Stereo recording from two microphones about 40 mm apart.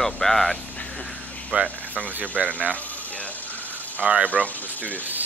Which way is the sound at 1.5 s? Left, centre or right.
Right.